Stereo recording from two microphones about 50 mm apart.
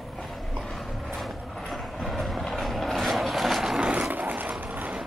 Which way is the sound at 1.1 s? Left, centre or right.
Centre.